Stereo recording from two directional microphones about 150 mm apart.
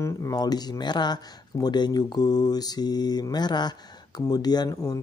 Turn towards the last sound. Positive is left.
turn(degrees=25)  # may be behind; listen again after turning